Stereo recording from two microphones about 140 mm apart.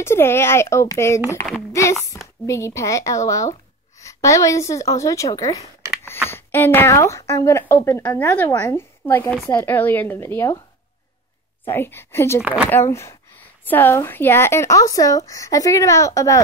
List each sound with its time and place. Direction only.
0.0 s a woman's voice: 20° left (ahead or behind)
11.6 s a woman's voice: 15° left (ahead or behind)
12.4 s speech: 10° right (ahead or behind)
12.6 s speech: 15° left (ahead or behind)